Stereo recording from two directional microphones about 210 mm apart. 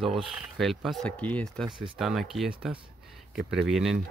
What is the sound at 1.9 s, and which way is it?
Speech, centre (ahead or behind).